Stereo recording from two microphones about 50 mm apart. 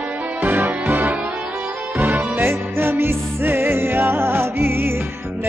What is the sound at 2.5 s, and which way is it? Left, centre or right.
Music, right.